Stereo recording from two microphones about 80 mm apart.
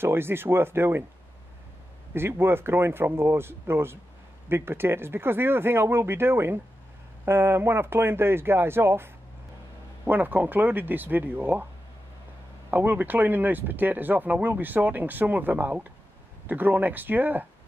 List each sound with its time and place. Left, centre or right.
0.0 s speech: right
2.1 s speech: right
12.7 s speech: right